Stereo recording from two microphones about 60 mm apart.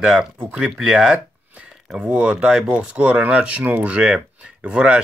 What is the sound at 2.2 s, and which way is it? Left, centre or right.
Speech, centre.